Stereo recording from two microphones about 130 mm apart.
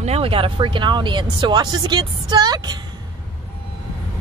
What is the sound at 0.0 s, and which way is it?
Speech, 50° right (ahead or behind).